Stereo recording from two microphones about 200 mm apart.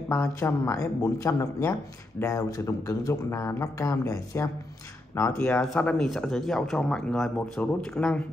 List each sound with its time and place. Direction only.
0.1 s speech: 15° left (ahead or behind)